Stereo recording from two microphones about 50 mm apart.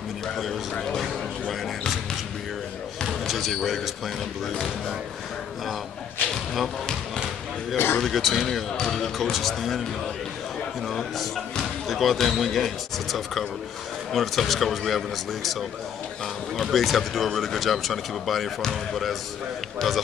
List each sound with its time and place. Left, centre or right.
3.3 s speech: centre
7.7 s a man's voice: left
8.0 s speech: centre
10.9 s speech: centre
16.5 s speech: centre